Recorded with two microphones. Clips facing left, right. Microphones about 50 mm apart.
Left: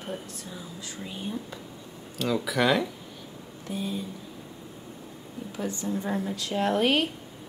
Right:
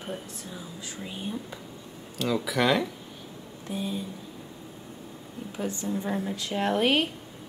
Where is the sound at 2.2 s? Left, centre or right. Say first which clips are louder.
Even; centre.